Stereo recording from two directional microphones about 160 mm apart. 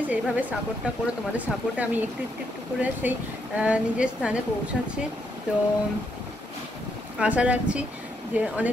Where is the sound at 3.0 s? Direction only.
10° right (ahead or behind).